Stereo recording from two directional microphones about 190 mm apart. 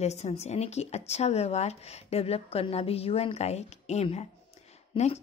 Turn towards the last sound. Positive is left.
turn(degrees=35)  # may be behind; listen again after turning